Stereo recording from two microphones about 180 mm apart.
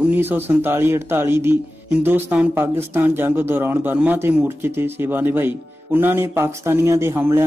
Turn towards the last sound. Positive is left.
turn(degrees=-15)  # may be behind; listen again after turning